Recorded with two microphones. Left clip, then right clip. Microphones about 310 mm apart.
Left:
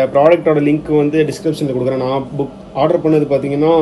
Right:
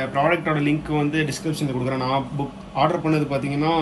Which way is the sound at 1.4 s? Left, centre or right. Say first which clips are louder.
Left 9 dB; right.